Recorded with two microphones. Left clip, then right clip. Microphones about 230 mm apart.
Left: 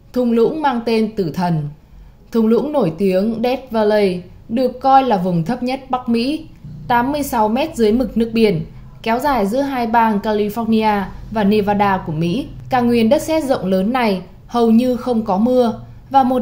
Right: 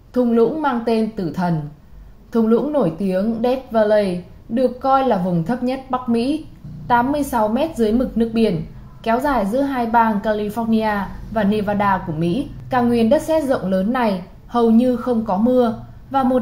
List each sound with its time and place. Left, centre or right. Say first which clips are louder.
0.1 s a woman's voice: left 1 dB; left